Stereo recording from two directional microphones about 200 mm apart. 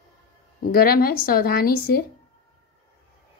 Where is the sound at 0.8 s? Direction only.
50° left (ahead or behind).